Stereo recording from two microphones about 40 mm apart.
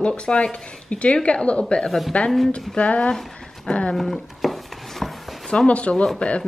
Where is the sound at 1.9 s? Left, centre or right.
Centre.